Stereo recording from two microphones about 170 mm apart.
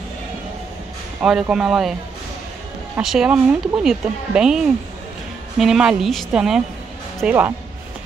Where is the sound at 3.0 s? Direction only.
5° right (ahead or behind).